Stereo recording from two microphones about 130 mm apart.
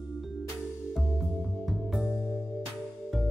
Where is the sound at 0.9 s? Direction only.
Centre (ahead or behind).